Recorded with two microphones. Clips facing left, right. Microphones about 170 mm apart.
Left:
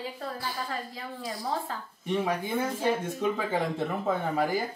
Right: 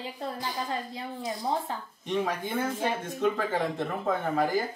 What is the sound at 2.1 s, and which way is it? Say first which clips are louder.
Speech: left 1 dB; 10° left (ahead or behind).